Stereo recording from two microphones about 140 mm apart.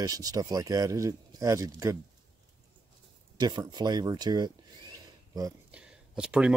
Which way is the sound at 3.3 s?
30° right (ahead or behind).